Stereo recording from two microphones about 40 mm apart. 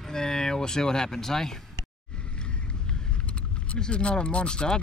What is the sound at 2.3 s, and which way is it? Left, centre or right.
Speech, left.